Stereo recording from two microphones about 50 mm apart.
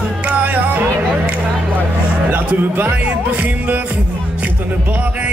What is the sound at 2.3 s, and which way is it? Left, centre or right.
Speech, right.